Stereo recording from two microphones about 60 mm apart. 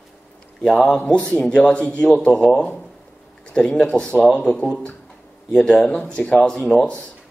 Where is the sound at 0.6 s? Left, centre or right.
Centre.